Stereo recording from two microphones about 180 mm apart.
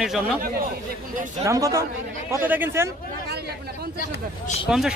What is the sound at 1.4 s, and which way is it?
Speech, 20° right (ahead or behind).